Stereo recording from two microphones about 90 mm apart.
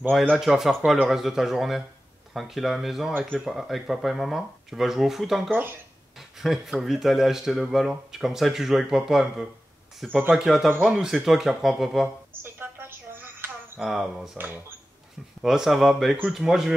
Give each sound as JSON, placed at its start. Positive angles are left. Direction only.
{"t": 0.3, "sound": "speech", "side_deg": -5}
{"t": 5.5, "sound": "speech", "side_deg": -25}
{"t": 6.1, "sound": "speech", "side_deg": -5}
{"t": 10.7, "sound": "speech", "side_deg": -15}
{"t": 11.2, "sound": "speech", "side_deg": -5}
{"t": 12.4, "sound": "a sound", "side_deg": -25}
{"t": 13.7, "sound": "speech", "side_deg": -5}
{"t": 15.4, "sound": "speech", "side_deg": -5}